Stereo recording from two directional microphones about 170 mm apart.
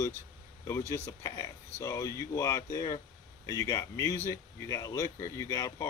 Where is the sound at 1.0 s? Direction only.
20° left (ahead or behind).